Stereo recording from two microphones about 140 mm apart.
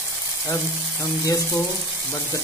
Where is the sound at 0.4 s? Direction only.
25° left (ahead or behind).